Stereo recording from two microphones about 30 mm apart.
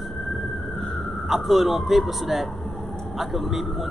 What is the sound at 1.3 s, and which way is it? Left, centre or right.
Speech, centre.